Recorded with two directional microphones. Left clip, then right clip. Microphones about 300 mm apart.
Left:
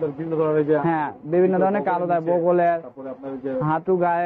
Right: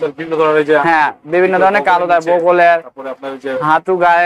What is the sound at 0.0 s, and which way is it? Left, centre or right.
A man's voice, centre.